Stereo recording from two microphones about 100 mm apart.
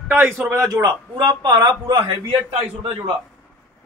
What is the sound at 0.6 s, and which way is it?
A man's voice, 40° right (ahead or behind).